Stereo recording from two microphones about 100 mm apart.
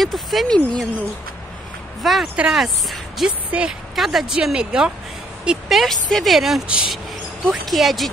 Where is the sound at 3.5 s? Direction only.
15° right (ahead or behind).